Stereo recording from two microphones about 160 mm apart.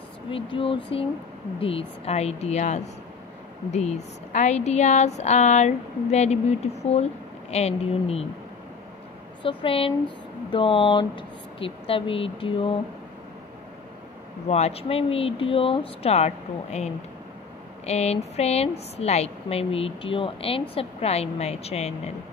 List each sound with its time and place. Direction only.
0.3 s speech: 35° left (ahead or behind)
9.4 s speech: 30° left (ahead or behind)
14.5 s speech: 40° left (ahead or behind)